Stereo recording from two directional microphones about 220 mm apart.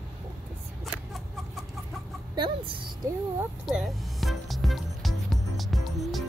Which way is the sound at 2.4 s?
20° right (ahead or behind).